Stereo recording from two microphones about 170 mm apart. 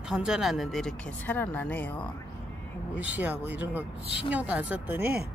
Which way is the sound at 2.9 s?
10° right (ahead or behind).